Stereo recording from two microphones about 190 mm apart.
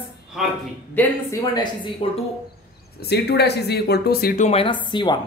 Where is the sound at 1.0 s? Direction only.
15° left (ahead or behind).